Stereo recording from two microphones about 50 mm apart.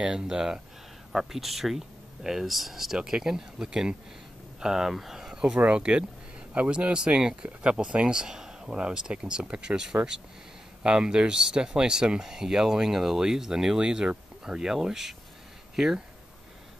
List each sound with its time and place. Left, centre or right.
0.0 s speech: centre
1.1 s speech: centre